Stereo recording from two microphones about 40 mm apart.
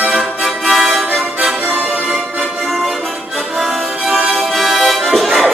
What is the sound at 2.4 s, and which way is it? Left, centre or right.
Music, centre.